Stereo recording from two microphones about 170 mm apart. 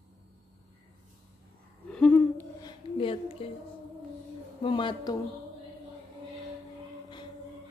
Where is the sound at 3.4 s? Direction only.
35° left (ahead or behind).